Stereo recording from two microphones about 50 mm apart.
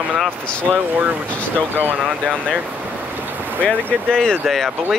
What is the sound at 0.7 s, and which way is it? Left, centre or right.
Speech, centre.